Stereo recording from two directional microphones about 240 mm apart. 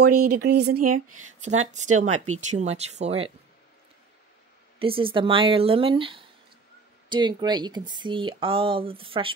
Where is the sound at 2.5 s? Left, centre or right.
Right.